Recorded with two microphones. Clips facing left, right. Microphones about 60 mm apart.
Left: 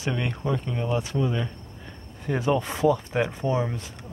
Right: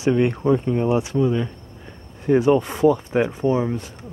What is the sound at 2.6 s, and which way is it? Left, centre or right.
Speech, centre.